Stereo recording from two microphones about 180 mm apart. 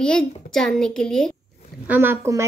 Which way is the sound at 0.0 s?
5° left (ahead or behind).